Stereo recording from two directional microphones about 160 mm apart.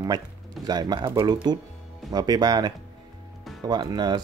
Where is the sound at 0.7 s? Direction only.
25° right (ahead or behind).